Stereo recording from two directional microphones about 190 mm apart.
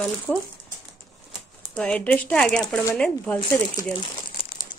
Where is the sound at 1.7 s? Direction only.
5° left (ahead or behind).